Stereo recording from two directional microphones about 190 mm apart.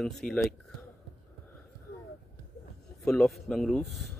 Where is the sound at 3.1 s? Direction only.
Centre (ahead or behind).